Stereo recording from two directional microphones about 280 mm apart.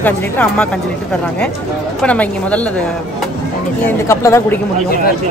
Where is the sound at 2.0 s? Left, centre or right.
Centre.